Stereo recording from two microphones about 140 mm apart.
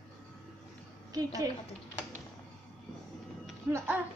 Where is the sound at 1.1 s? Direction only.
25° right (ahead or behind).